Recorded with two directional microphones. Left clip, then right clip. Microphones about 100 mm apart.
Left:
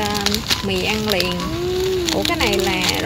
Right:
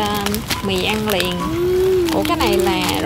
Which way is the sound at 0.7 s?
20° right (ahead or behind).